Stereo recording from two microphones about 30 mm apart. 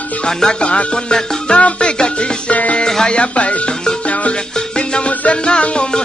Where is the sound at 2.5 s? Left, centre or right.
Left.